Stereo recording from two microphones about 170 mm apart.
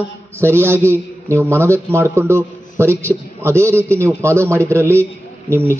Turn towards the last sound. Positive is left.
turn(degrees=-15)  # may be behind; listen again after turning